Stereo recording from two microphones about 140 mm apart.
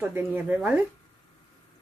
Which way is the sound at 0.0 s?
15° right (ahead or behind).